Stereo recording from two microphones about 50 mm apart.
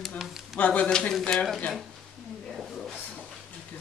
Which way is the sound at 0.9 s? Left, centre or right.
Centre.